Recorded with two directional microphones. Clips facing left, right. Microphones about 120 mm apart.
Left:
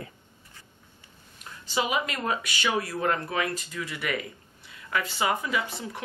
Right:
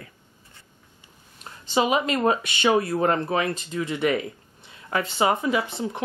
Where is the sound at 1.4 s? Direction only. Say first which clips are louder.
Right 6 dB; 30° right (ahead or behind).